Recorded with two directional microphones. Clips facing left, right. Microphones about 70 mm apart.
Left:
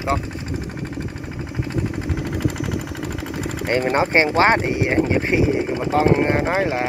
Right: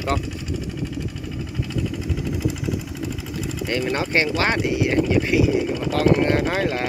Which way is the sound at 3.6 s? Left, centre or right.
Left.